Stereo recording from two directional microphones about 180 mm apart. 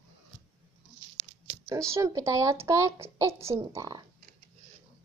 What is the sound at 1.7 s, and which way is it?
Speech, 15° right (ahead or behind).